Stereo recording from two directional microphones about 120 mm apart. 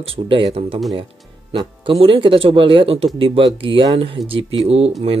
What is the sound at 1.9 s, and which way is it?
Speech, 50° right (ahead or behind).